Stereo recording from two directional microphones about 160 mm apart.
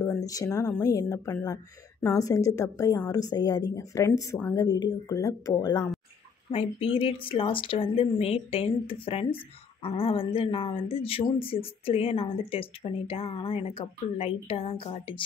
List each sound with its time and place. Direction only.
0.0 s a woman's voice: 20° left (ahead or behind)
6.5 s speech: 35° left (ahead or behind)